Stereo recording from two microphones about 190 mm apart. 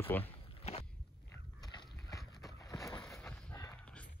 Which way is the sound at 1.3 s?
20° left (ahead or behind).